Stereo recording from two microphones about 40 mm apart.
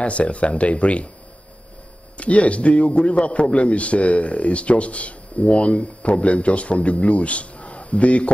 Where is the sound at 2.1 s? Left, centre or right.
Left.